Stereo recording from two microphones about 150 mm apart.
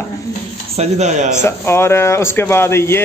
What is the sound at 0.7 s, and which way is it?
Speech, 50° right (ahead or behind).